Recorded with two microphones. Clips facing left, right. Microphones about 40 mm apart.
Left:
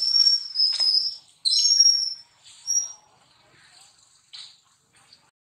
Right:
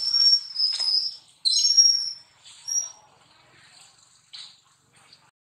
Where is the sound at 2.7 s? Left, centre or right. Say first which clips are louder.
Even; centre.